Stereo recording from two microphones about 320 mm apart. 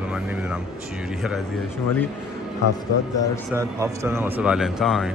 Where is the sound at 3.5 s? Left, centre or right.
Centre.